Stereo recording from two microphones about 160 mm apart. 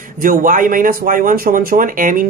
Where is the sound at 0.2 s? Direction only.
60° right (ahead or behind).